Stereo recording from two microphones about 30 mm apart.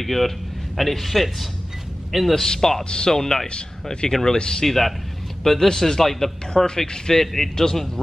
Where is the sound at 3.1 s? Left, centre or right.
Centre.